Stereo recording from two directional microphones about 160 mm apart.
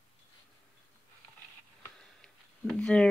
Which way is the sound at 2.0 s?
5° left (ahead or behind).